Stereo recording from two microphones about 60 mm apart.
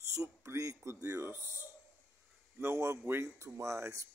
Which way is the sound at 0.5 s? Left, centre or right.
Right.